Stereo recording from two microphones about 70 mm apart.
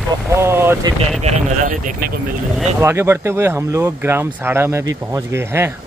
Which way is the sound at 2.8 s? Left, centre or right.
Right.